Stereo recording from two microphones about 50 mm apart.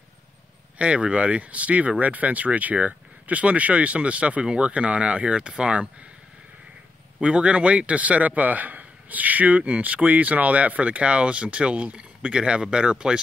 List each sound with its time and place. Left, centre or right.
0.7 s a man's voice: right
7.2 s a man's voice: right